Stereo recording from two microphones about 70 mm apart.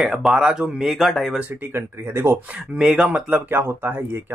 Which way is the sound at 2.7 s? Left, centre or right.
Centre.